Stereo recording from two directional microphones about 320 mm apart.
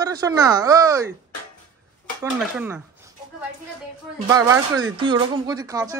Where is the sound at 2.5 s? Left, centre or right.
Centre.